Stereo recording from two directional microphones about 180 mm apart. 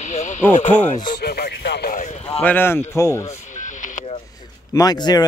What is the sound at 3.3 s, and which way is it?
Vehicle, 45° left (ahead or behind).